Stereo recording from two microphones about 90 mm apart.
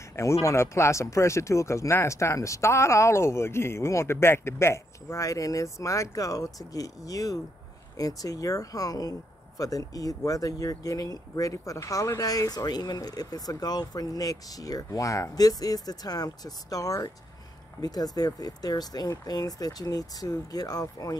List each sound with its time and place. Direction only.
0.1 s speech: 35° left (ahead or behind)